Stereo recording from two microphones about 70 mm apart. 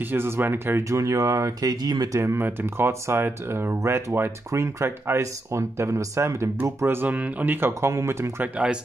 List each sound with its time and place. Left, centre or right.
0.0 s speech: right
0.8 s speech: right
2.1 s speech: right
7.1 s speech: right
7.9 s speech: right